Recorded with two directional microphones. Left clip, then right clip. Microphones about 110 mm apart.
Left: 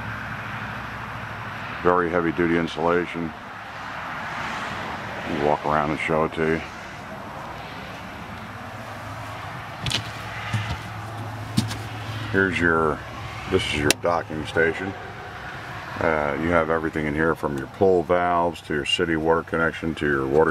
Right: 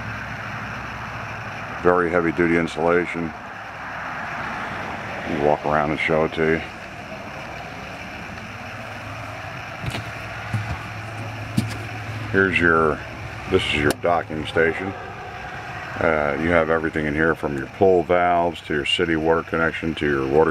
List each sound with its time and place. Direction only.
1.9 s speech: 5° right (ahead or behind)
5.3 s speech: 15° left (ahead or behind)
5.7 s speech: centre (ahead or behind)
12.4 s speech: centre (ahead or behind)
16.0 s speech: 5° right (ahead or behind)